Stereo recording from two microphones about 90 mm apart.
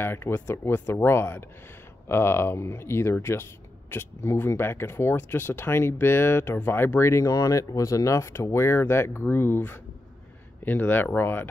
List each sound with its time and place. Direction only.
0.0 s speech: 25° left (ahead or behind)